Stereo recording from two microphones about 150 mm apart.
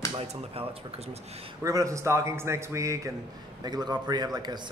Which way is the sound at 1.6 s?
20° right (ahead or behind).